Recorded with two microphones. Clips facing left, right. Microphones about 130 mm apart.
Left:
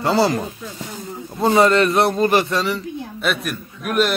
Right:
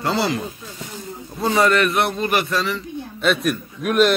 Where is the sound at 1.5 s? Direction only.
25° left (ahead or behind).